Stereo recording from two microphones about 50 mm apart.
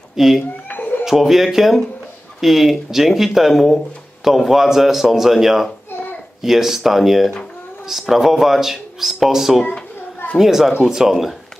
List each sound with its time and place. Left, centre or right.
0.1 s speech: centre
0.7 s a sound: left
1.0 s a man's voice: centre